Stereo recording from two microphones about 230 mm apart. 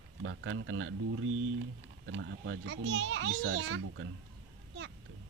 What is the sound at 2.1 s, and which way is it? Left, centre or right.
A child's voice, right.